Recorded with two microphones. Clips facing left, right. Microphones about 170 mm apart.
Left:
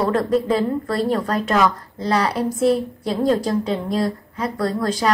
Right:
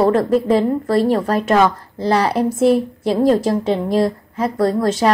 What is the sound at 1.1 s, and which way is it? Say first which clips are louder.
A woman's voice: right 4 dB; 30° right (ahead or behind).